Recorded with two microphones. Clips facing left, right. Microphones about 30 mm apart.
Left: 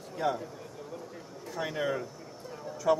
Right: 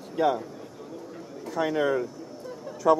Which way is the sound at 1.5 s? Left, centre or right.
Centre.